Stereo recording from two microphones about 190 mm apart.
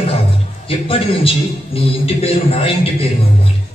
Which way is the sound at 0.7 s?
30° left (ahead or behind).